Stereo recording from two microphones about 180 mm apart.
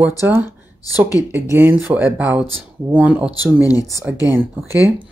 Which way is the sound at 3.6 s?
20° left (ahead or behind).